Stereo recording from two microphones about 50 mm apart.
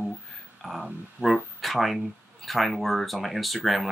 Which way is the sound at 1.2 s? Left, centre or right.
Right.